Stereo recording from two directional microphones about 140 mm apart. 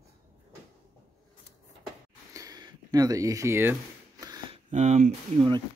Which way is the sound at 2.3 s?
25° right (ahead or behind).